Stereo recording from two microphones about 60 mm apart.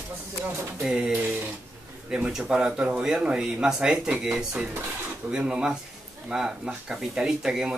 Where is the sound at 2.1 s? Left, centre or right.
Centre.